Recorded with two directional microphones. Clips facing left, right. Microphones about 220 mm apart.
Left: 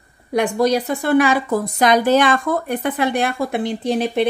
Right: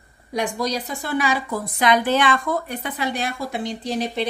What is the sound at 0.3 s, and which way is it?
A woman's voice, 55° left (ahead or behind).